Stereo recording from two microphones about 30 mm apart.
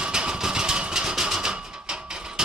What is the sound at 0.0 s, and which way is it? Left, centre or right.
Vehicle, right.